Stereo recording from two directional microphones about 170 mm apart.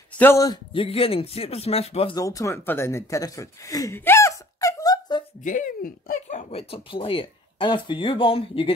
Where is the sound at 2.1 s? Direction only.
20° left (ahead or behind).